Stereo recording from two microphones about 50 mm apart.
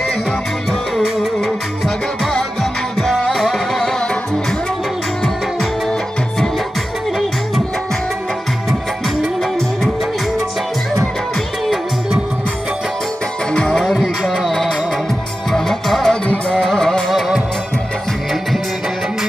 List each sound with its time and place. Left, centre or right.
2.2 s music: centre
5.2 s music: centre
13.5 s music: centre
13.7 s music: centre